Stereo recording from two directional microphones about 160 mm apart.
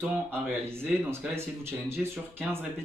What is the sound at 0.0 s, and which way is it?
Speech, 10° right (ahead or behind).